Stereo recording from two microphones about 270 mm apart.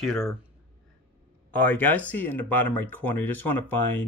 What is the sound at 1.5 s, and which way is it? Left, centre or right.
Speech, centre.